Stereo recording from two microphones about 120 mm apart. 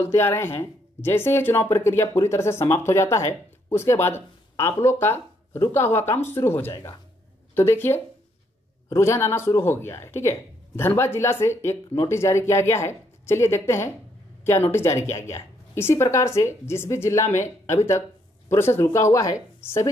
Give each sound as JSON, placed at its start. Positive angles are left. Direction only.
{"t": 0.0, "sound": "speech", "side_deg": 20}